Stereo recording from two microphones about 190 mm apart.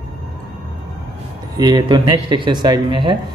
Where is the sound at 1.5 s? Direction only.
20° right (ahead or behind).